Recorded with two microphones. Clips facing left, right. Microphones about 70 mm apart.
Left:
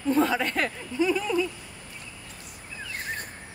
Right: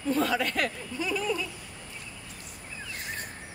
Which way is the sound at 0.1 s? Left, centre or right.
Left.